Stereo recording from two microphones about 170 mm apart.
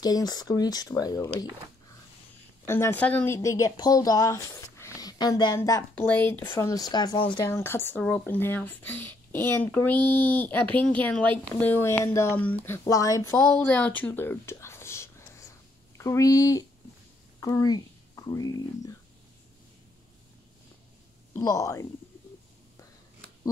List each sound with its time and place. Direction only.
0.0 s speech: 20° left (ahead or behind)
2.6 s speech: 15° left (ahead or behind)
3.3 s speech: 20° left (ahead or behind)
7.4 s speech: 15° left (ahead or behind)
21.4 s speech: 20° left (ahead or behind)